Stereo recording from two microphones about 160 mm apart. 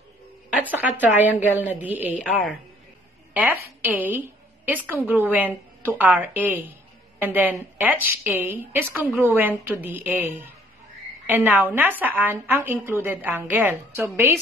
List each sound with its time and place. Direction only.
0.5 s a woman's voice: 10° right (ahead or behind)